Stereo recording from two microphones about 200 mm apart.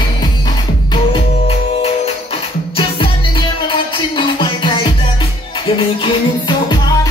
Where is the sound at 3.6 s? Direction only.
25° left (ahead or behind).